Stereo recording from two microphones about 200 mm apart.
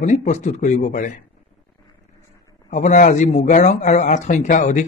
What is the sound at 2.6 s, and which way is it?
Speech, 35° left (ahead or behind).